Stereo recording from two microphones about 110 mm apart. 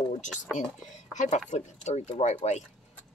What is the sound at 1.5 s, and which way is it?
Speech, 90° left.